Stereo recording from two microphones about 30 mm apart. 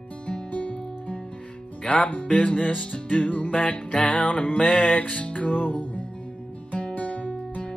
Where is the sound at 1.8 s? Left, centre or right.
Left.